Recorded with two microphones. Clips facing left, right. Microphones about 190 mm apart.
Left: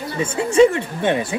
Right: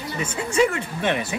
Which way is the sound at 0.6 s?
25° left (ahead or behind).